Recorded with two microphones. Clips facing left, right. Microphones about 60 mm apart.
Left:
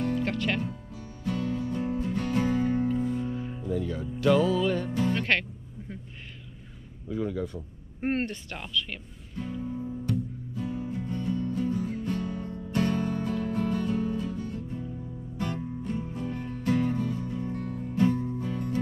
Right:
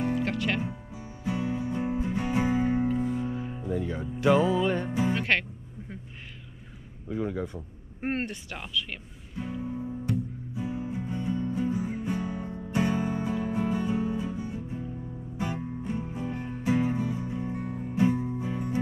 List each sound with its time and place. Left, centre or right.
0.0 s music: centre
7.1 s speech: centre
7.4 s a sound: centre
15.3 s music: centre